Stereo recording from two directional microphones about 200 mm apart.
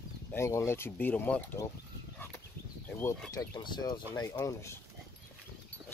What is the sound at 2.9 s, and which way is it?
Speech, 10° left (ahead or behind).